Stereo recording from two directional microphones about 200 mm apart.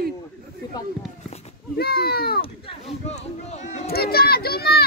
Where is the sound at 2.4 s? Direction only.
30° left (ahead or behind).